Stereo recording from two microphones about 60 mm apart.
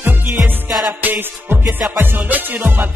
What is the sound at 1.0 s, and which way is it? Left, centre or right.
Music, right.